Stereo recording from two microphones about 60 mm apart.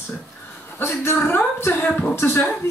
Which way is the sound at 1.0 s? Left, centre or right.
Left.